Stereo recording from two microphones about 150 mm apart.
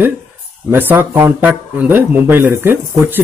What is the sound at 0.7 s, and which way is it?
A man's voice, 15° right (ahead or behind).